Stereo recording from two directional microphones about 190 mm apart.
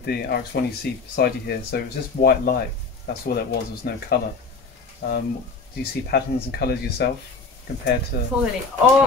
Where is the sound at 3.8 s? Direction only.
55° left (ahead or behind).